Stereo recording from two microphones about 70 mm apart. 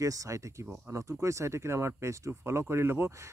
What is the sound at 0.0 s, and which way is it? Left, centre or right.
Speech, right.